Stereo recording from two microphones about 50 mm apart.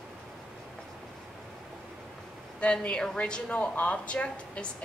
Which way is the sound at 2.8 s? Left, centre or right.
Left.